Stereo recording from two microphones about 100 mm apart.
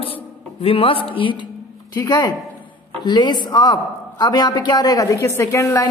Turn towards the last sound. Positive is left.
turn(degrees=35)  # may be behind; listen again after turning